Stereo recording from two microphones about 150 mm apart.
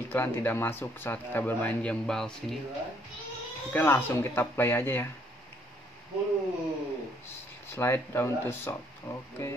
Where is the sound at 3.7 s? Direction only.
15° left (ahead or behind).